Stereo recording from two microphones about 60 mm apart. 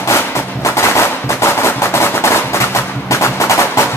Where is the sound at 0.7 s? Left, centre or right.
Left.